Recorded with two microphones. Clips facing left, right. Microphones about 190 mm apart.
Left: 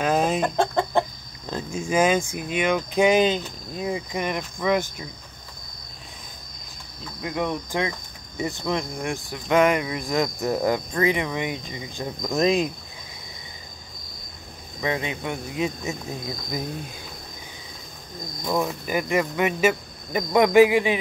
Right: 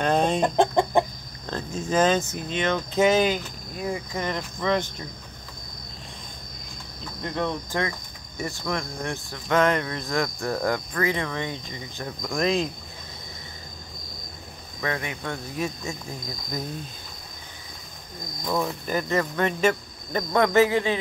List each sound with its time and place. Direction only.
0.0 s chicken: 5° left (ahead or behind)
0.6 s chicken: 15° right (ahead or behind)
1.5 s speech: 10° left (ahead or behind)
7.2 s speech: 10° left (ahead or behind)
14.8 s speech: 20° left (ahead or behind)
18.5 s speech: 10° left (ahead or behind)